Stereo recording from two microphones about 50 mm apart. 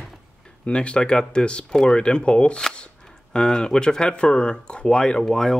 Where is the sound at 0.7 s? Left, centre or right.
Left.